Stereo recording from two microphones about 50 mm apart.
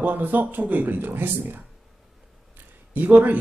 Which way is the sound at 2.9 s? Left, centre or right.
Right.